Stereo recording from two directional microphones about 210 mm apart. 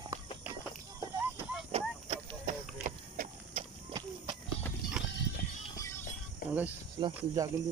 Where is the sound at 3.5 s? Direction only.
20° right (ahead or behind).